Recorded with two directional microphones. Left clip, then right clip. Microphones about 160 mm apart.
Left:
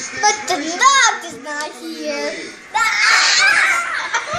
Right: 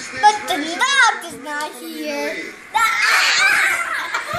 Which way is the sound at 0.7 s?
25° left (ahead or behind).